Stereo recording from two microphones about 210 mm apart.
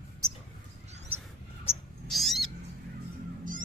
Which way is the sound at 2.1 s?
Centre (ahead or behind).